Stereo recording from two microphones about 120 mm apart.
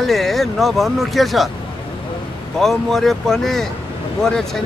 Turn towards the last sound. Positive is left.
turn(degrees=5)  # may be behind; listen again after turning